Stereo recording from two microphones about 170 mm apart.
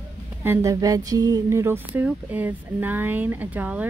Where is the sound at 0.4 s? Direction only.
15° right (ahead or behind).